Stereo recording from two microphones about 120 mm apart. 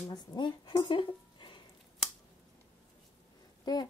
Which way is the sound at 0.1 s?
40° left (ahead or behind).